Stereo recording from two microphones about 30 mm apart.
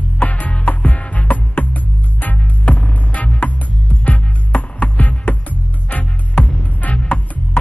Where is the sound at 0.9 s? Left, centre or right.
Left.